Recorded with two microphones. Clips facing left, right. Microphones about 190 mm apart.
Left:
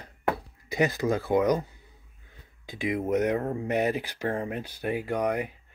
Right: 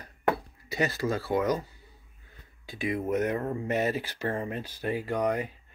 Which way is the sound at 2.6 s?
15° left (ahead or behind).